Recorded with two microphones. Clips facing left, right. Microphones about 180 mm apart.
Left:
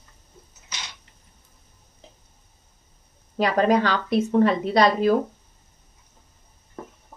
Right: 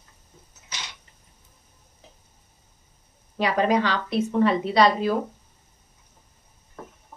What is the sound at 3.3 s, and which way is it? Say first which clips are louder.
A woman's voice: left 2 dB; 45° left (ahead or behind).